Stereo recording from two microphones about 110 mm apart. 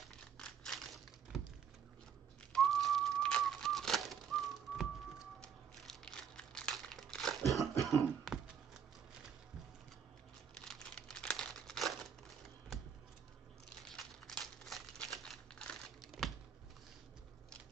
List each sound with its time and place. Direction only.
0.1 s a sound: 5° left (ahead or behind)
2.5 s pigeon: 5° left (ahead or behind)
5.4 s crumpling: 5° left (ahead or behind)
7.7 s cough: 30° left (ahead or behind)
10.6 s crumpling: 5° left (ahead or behind)
13.8 s crumpling: 5° left (ahead or behind)